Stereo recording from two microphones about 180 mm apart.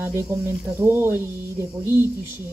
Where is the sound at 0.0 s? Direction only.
15° right (ahead or behind).